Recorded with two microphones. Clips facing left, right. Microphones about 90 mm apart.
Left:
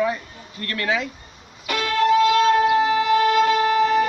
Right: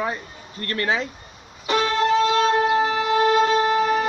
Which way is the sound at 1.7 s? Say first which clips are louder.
Left 1 dB; 25° right (ahead or behind).